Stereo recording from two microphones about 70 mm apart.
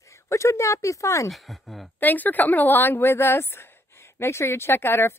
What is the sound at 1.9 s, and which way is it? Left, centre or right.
Speech, left.